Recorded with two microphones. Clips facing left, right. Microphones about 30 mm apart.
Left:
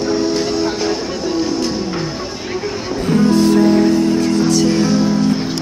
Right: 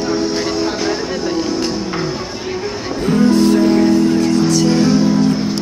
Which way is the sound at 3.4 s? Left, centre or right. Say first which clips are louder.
Even; centre.